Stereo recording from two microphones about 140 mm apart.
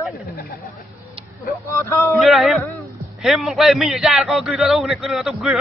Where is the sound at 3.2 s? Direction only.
Centre (ahead or behind).